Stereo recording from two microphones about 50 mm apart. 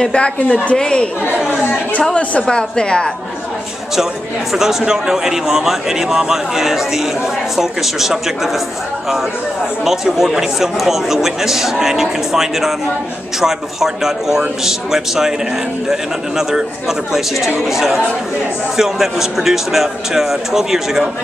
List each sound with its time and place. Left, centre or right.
0.1 s a woman's voice: left
1.6 s speech: left
2.4 s a woman's voice: centre
3.9 s a man's voice: centre
9.8 s a man's voice: centre